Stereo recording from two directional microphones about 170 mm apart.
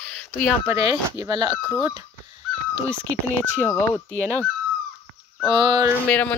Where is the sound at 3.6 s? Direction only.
15° left (ahead or behind).